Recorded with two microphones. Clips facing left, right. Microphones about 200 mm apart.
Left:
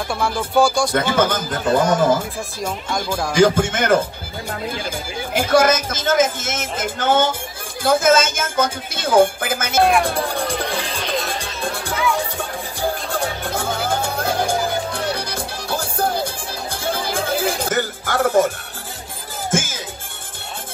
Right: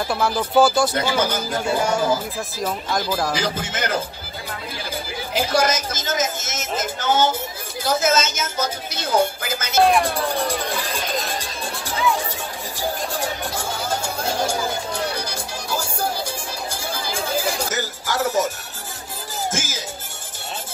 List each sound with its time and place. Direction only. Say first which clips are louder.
0.1 s speech: even; centre (ahead or behind)
0.9 s speech: left 3 dB; 50° left (ahead or behind)
3.1 s speech: right 1 dB; 5° right (ahead or behind)
3.3 s speech: left 10 dB; 50° left (ahead or behind)
5.3 s speech: left 5 dB; 50° left (ahead or behind)
13.5 s music: left 4 dB; 55° left (ahead or behind)
19.5 s music: left 6 dB; 55° left (ahead or behind)